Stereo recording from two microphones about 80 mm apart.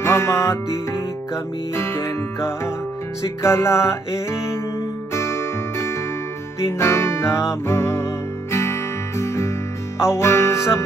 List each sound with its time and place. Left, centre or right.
0.0 s music: left